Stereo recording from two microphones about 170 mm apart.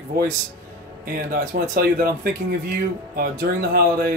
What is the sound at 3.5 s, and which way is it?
Speech, 70° right (ahead or behind).